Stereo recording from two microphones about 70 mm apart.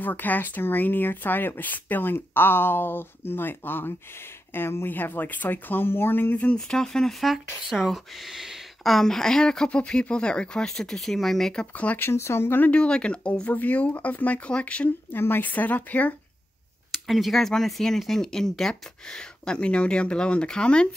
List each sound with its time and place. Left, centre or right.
0.0 s speech: left
6.5 s speech: centre
11.7 s speech: left
12.0 s speech: left
12.7 s speech: centre
15.1 s speech: left
16.9 s speech: centre